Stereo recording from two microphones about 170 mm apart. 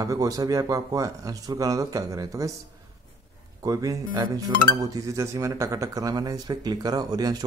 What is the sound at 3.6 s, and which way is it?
Speech, 20° right (ahead or behind).